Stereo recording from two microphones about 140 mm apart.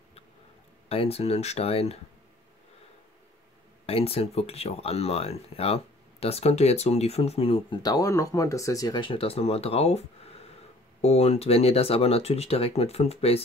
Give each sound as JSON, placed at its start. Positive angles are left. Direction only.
{"t": 0.8, "sound": "speech", "side_deg": 45}
{"t": 3.8, "sound": "speech", "side_deg": 45}
{"t": 7.8, "sound": "speech", "side_deg": 25}